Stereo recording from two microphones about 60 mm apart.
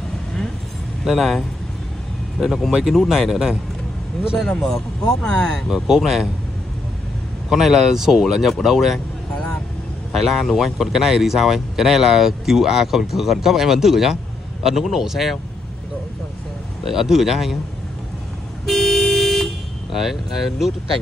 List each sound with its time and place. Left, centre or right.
1.0 s speech: centre
2.4 s speech: centre
4.4 s speech: centre
5.7 s a man's voice: centre
7.4 s speech: centre
9.3 s vehicle: left
10.1 s a man's voice: centre
16.8 s speech: centre
18.7 s car: centre